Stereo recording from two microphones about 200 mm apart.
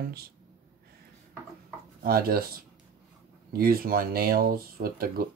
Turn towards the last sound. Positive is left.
turn(degrees=-50)  # may be behind; listen again after turning